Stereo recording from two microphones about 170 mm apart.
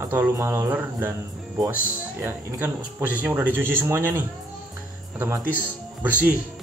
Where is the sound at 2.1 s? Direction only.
15° right (ahead or behind).